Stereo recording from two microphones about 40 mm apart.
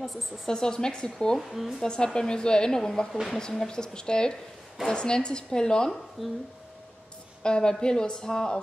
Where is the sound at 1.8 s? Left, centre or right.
Left.